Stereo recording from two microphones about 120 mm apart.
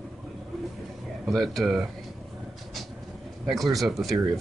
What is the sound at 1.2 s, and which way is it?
Speech, centre (ahead or behind).